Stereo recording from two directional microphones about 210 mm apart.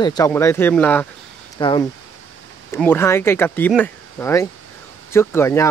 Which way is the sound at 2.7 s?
10° left (ahead or behind).